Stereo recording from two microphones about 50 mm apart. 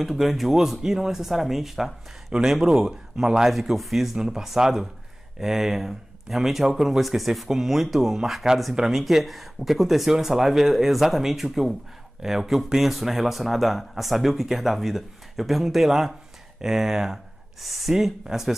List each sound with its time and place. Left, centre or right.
0.0 s speech: centre
3.5 s speech: centre